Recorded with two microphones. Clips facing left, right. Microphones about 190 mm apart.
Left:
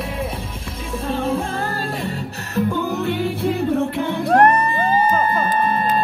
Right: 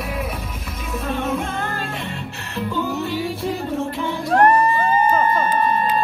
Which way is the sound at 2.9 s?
60° left (ahead or behind).